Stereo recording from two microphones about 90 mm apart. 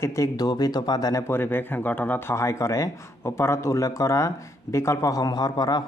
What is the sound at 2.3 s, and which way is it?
Speech, 35° left (ahead or behind).